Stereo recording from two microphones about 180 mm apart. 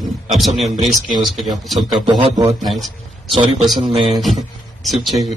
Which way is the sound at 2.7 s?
Centre (ahead or behind).